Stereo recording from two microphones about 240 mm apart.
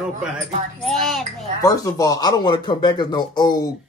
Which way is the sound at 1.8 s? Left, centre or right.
Centre.